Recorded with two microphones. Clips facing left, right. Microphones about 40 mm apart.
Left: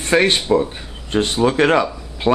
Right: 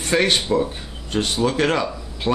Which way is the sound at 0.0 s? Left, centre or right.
Left.